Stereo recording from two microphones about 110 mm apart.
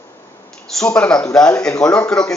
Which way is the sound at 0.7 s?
10° left (ahead or behind).